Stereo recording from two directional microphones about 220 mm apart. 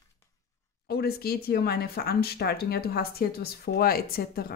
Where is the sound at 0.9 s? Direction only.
45° left (ahead or behind).